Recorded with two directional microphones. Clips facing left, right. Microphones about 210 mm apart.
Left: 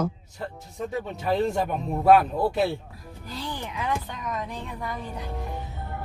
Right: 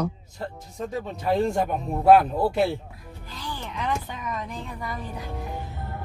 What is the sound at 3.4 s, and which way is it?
Music, 15° left (ahead or behind).